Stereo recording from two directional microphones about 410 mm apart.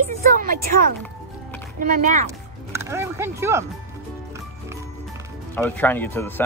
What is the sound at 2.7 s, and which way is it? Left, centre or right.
Speech, centre.